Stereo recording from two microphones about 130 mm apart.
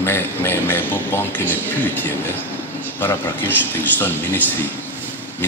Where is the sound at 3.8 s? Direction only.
15° left (ahead or behind).